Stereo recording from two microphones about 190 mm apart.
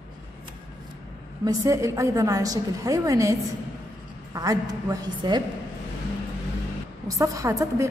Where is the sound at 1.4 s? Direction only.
20° right (ahead or behind).